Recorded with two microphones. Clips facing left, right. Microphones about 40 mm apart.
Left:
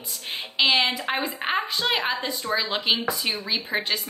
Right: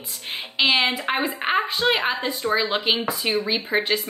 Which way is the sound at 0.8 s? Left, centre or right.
Right.